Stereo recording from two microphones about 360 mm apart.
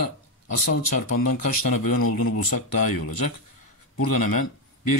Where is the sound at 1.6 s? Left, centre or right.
Left.